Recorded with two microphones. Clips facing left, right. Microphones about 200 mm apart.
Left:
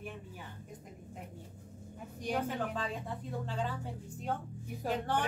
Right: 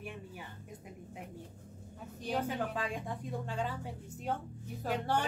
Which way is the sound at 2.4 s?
10° right (ahead or behind).